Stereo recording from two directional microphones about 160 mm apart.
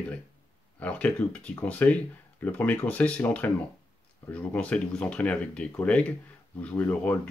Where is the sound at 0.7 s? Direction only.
10° left (ahead or behind).